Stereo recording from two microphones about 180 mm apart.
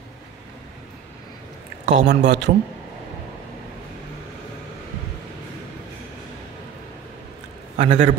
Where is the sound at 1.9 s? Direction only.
80° right.